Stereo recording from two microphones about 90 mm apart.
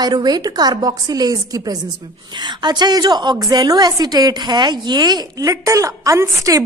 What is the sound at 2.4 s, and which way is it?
A woman's voice, 55° right (ahead or behind).